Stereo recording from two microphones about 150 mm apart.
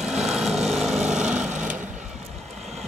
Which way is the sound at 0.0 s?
Centre (ahead or behind).